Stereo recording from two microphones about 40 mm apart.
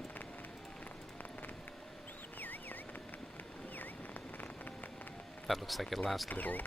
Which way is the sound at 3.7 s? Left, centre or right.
Left.